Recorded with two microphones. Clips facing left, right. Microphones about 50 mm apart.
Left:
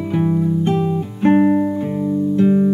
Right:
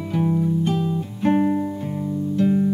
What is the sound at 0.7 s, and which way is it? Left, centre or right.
Music, left.